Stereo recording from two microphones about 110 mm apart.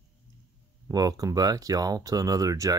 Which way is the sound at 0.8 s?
35° right (ahead or behind).